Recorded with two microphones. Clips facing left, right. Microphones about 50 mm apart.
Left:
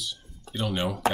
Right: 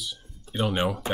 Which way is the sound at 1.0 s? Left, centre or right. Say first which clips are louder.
Left 3 dB; left.